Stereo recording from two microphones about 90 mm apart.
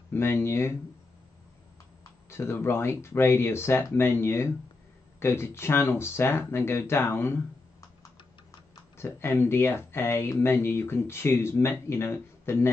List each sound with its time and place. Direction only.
0.1 s speech: 30° left (ahead or behind)
2.2 s speech: 30° left (ahead or behind)
8.9 s speech: 25° left (ahead or behind)